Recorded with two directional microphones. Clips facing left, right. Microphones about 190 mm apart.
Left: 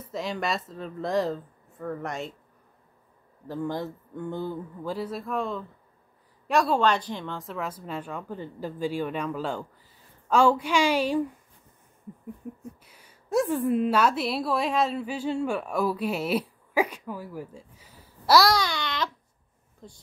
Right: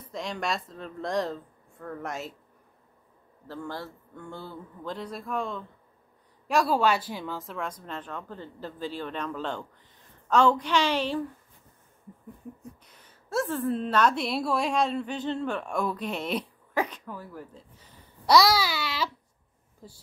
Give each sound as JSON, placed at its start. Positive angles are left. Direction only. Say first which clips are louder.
{"t": 0.1, "sound": "speech", "louder": "left 2 dB", "side_deg": 5}
{"t": 3.4, "sound": "a woman's voice", "louder": "left 6 dB", "side_deg": 15}
{"t": 12.8, "sound": "a woman's voice", "louder": "left 1 dB", "side_deg": 10}